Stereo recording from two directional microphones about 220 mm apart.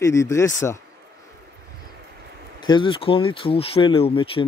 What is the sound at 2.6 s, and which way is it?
Speech, 20° left (ahead or behind).